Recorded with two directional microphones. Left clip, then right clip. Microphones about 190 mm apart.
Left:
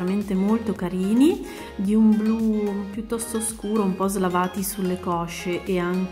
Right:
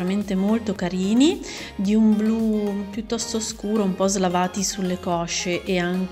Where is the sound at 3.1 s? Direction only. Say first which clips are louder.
Right 2 dB; 10° right (ahead or behind).